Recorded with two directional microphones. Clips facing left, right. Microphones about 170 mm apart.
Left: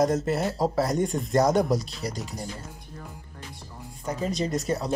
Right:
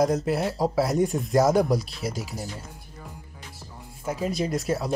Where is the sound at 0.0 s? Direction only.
Centre (ahead or behind).